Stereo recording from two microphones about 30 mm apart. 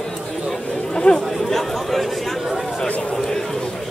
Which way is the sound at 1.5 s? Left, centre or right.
Centre.